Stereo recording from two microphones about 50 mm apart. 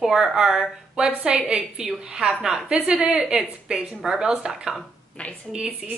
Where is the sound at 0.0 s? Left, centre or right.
Centre.